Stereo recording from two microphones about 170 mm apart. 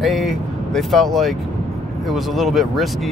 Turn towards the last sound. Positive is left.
turn(degrees=0)  # may be behind; listen again after turning